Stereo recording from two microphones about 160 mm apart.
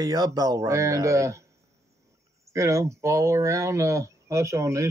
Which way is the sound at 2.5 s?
20° right (ahead or behind).